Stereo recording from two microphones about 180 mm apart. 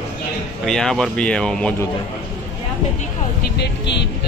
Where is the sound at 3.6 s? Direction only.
70° left (ahead or behind).